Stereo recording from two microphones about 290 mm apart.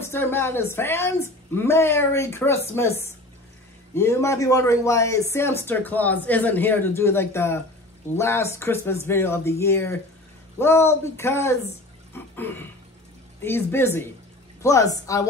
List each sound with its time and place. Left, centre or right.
0.0 s a woman's voice: centre
3.9 s a woman's voice: centre
12.1 s water: centre
13.4 s a woman's voice: centre